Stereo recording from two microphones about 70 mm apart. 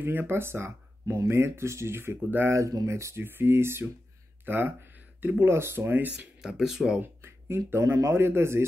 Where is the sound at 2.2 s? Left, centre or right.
Right.